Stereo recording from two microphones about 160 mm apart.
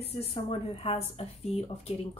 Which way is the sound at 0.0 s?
40° left (ahead or behind).